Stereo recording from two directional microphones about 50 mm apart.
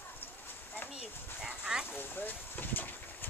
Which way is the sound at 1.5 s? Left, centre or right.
Centre.